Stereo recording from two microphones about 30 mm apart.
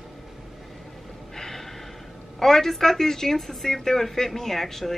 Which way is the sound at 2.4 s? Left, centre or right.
Centre.